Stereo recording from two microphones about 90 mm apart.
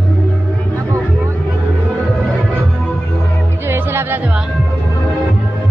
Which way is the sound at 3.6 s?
25° right (ahead or behind).